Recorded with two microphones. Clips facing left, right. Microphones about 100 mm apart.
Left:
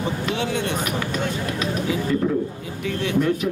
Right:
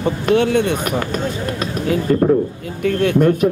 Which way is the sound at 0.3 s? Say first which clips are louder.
Right 12 dB; 55° right (ahead or behind).